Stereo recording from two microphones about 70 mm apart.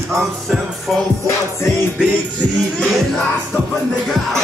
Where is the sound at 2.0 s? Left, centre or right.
Centre.